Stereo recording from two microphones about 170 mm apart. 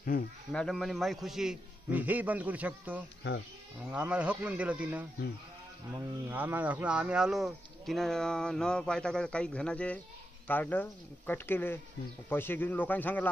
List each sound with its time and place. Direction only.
0.5 s speech: centre (ahead or behind)